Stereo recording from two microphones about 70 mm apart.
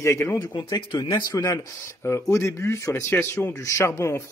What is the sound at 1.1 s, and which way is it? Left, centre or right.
Speech, left.